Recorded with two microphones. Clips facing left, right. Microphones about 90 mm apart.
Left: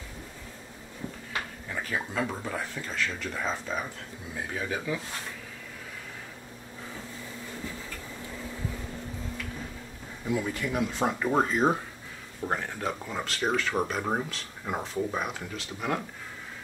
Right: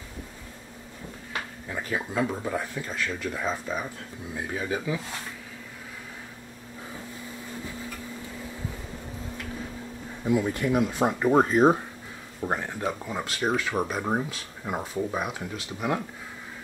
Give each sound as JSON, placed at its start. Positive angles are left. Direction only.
{"t": 1.7, "sound": "speech", "side_deg": -10}
{"t": 10.2, "sound": "speech", "side_deg": -20}